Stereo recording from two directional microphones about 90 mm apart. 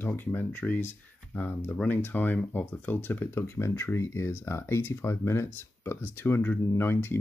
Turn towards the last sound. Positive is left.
turn(degrees=25)  # may be behind; listen again after turning